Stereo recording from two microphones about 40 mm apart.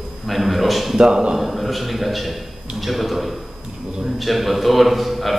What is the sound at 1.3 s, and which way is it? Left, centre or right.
Speech, centre.